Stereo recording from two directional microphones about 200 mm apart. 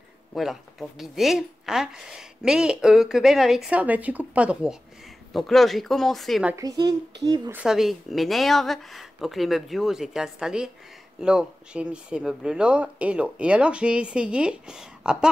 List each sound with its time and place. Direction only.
0.3 s a woman's voice: centre (ahead or behind)
6.5 s a woman's voice: 20° right (ahead or behind)
7.5 s a woman's voice: 5° right (ahead or behind)